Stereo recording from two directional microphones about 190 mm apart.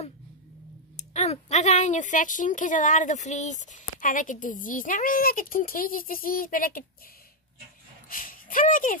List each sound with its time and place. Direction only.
0.9 s speech: 35° left (ahead or behind)
8.1 s speech: 45° left (ahead or behind)